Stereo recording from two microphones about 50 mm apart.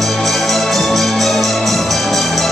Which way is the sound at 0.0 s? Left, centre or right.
Centre.